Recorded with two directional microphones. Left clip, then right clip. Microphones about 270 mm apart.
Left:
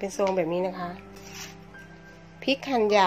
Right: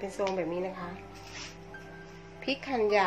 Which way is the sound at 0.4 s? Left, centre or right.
Left.